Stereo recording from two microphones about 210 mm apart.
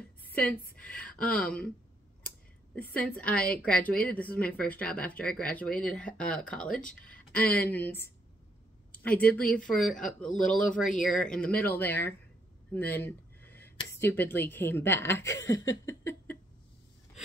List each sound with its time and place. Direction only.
0.7 s speech: 5° left (ahead or behind)
2.7 s a woman's voice: 10° left (ahead or behind)
15.4 s a sound: 65° left (ahead or behind)